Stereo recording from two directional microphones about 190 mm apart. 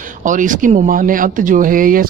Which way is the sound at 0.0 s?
45° right (ahead or behind).